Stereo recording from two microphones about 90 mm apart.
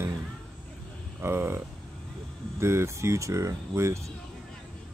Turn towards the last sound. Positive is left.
turn(degrees=-35)  # may be behind; listen again after turning